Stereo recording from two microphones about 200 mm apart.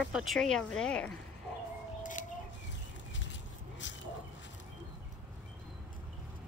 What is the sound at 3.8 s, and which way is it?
Dog, 70° left (ahead or behind).